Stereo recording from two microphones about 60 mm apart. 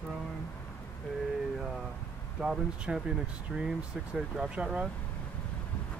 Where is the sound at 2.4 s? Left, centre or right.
Centre.